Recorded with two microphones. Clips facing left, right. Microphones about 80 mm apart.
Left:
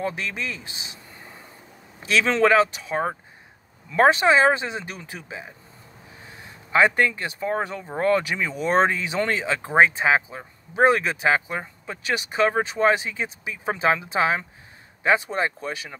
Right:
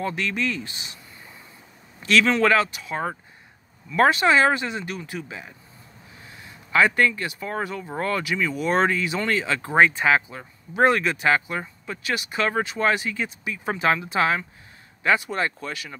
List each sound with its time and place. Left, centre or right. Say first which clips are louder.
0.0 s speech: right 2 dB; centre
2.0 s speech: even; left
6.7 s speech: even; left